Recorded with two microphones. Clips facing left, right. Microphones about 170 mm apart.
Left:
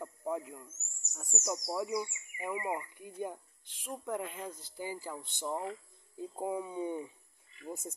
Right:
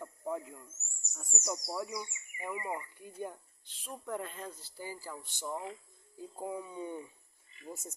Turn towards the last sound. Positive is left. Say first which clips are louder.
# left 3 dB
turn(degrees=25)  # may be behind; listen again after turning